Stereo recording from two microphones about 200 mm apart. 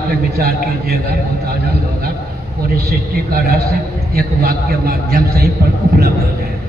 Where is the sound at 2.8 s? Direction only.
50° right (ahead or behind).